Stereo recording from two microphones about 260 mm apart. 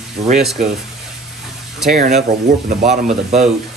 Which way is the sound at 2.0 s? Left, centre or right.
Right.